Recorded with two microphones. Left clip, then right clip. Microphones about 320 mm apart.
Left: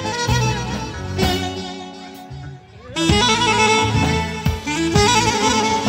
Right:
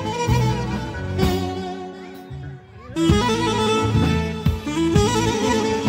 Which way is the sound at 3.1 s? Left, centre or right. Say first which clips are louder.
Left 5 dB; left.